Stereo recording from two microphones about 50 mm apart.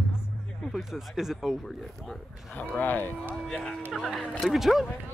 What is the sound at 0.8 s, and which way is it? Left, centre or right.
Speech, centre.